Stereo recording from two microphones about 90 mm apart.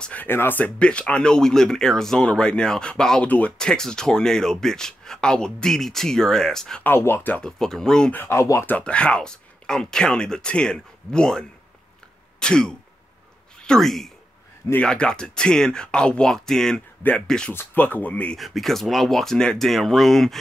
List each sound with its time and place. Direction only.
0.0 s speech: 15° left (ahead or behind)
6.8 s speech: 25° left (ahead or behind)
7.4 s speech: 5° left (ahead or behind)
8.1 s speech: 20° left (ahead or behind)
8.4 s speech: 35° left (ahead or behind)
8.6 s speech: 15° left (ahead or behind)
18.4 s speech: centre (ahead or behind)